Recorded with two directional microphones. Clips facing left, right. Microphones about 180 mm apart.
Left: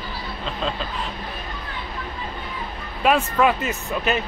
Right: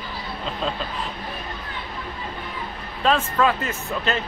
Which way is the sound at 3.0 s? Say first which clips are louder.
Left 2 dB; 15° left (ahead or behind).